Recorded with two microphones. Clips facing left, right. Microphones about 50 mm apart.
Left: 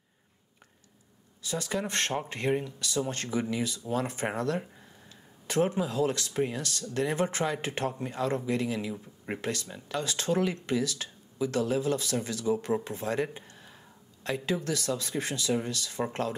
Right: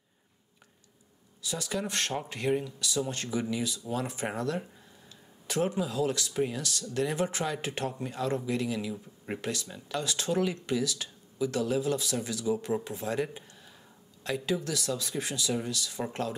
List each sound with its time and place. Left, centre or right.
1.5 s speech: left
5.5 s speech: left
8.9 s speech: centre
9.4 s speech: left